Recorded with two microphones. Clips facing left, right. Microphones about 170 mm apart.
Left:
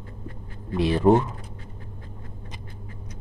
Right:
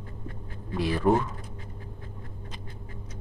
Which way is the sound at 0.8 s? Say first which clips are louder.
Left 5 dB; 25° left (ahead or behind).